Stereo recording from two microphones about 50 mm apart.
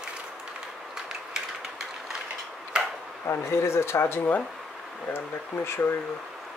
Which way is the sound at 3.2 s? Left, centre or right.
Left.